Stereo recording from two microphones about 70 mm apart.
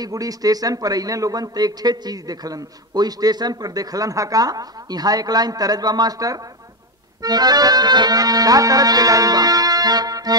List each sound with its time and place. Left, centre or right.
0.0 s a man's voice: right
7.2 s a man's voice: right